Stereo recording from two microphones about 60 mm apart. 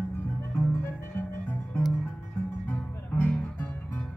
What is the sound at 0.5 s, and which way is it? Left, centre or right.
Music, left.